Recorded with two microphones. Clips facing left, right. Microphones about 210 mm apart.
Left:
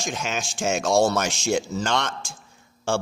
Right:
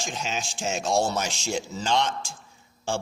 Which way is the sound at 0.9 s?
75° left (ahead or behind).